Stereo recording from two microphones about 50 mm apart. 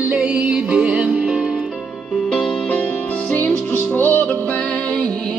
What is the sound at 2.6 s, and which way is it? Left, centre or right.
Music, left.